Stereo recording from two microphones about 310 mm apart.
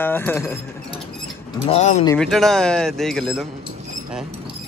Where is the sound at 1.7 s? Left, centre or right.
Left.